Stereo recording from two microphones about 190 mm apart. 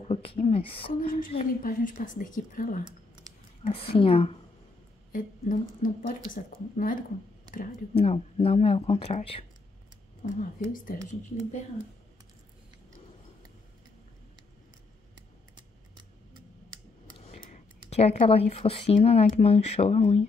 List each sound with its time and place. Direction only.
0.1 s speech: 30° left (ahead or behind)
1.0 s speech: 45° left (ahead or behind)
2.8 s a sound: 25° right (ahead or behind)
3.7 s speech: 30° left (ahead or behind)
5.1 s speech: 45° left (ahead or behind)
7.9 s speech: 30° left (ahead or behind)
10.2 s speech: 45° left (ahead or behind)
17.2 s speech: 40° left (ahead or behind)